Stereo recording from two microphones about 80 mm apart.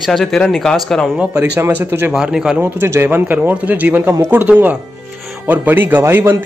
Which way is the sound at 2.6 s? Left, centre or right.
Right.